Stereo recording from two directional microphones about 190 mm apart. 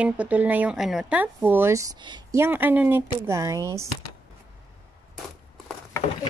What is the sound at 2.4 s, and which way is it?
Speech, 10° right (ahead or behind).